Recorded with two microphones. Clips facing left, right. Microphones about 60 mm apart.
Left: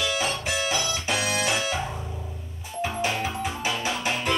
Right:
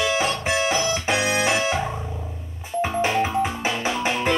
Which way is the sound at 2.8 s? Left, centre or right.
Right.